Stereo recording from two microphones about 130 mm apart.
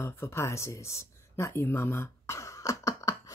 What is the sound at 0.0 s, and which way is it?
Speech, 20° left (ahead or behind).